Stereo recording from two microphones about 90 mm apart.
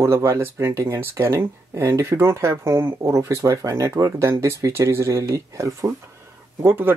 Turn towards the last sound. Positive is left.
turn(degrees=-25)  # may be behind; listen again after turning